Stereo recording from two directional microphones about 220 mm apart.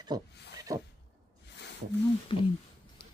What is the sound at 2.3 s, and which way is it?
Speech, 25° left (ahead or behind).